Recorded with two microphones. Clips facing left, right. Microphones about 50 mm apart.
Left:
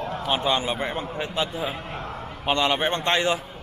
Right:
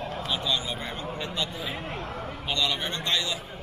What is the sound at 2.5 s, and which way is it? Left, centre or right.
Speech, left.